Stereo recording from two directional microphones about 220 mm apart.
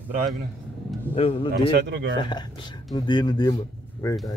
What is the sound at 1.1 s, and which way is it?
Speech, 25° left (ahead or behind).